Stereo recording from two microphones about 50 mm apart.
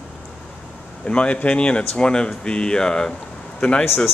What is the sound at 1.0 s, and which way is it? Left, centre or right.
A man's voice, left.